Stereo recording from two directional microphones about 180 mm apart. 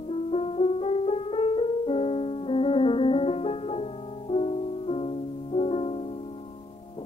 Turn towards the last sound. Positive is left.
turn(degrees=35)  # may be behind; listen again after turning